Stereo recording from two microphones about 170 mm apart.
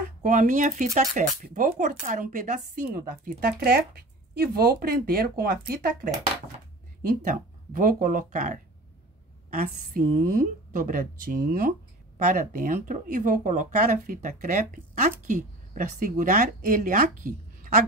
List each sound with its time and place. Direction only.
0.2 s speech: 50° right (ahead or behind)
9.6 s speech: 55° right (ahead or behind)